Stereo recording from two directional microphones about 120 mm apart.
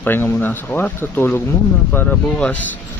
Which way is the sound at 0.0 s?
15° left (ahead or behind).